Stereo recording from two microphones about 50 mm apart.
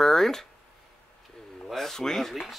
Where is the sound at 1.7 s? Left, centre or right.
Centre.